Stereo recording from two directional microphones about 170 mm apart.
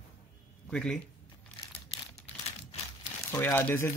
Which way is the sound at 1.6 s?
30° left (ahead or behind).